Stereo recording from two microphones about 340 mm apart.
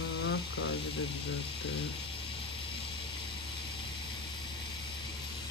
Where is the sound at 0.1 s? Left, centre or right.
Left.